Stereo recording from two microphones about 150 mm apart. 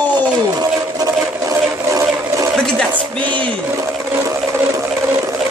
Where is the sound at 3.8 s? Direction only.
20° right (ahead or behind).